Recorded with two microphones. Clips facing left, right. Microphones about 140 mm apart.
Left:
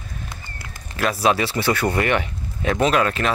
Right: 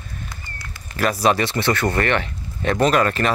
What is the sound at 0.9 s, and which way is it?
Speech, centre (ahead or behind).